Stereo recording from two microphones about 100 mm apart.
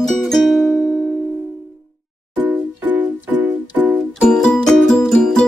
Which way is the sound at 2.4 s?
15° right (ahead or behind).